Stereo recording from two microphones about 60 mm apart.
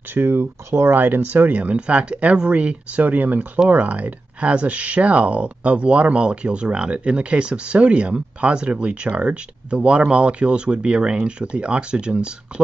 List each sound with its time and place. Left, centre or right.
0.1 s speech: right; by 12.6 s centre